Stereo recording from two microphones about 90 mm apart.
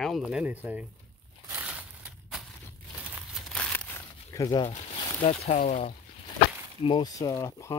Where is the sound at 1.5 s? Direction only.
20° right (ahead or behind).